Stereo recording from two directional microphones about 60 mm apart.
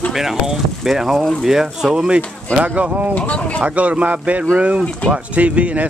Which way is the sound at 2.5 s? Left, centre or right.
Right.